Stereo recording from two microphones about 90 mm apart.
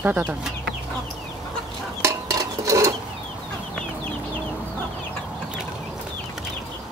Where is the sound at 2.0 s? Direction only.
40° right (ahead or behind).